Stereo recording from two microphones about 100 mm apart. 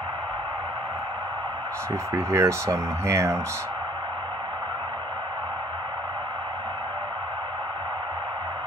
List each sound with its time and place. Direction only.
2.1 s speech: 30° right (ahead or behind)